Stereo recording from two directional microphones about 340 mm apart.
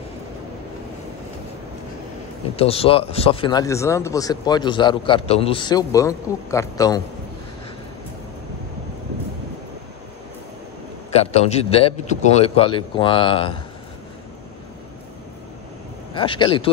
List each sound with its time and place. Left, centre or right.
2.5 s speech: centre
11.1 s speech: centre
16.2 s speech: centre